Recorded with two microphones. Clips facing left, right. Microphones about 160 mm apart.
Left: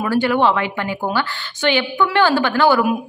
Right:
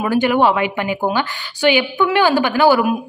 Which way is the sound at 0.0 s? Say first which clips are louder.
Right 2 dB; 15° right (ahead or behind).